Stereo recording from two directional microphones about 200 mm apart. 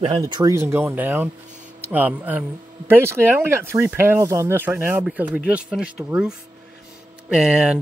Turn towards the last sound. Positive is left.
turn(degrees=-5)  # may be behind; listen again after turning